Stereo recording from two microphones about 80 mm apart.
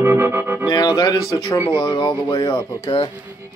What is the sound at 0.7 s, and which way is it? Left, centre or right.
Speech, left.